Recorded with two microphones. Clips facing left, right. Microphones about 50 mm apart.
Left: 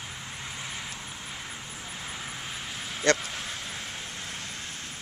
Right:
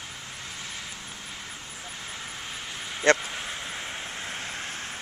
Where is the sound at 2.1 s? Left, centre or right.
Centre; by 4.9 s right.